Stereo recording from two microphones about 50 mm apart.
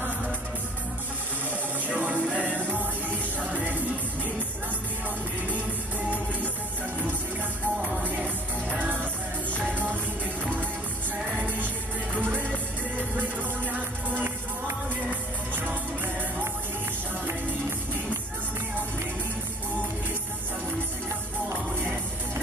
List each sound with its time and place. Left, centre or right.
1.9 s music: right
5.5 s music: right
7.6 s music: right
11.3 s music: right
15.5 s music: right